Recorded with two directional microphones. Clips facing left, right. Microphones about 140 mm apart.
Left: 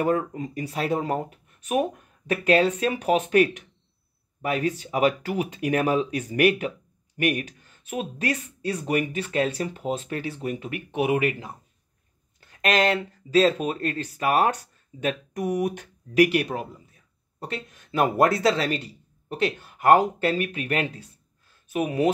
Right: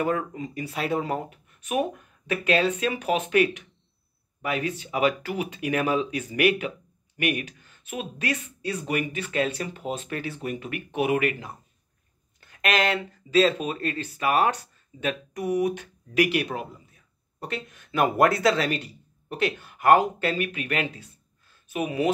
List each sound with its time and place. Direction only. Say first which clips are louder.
0.0 s speech: left 3 dB; 40° left (ahead or behind); by 11.5 s 25° left (ahead or behind)
12.4 s speech: left 2 dB; 35° left (ahead or behind)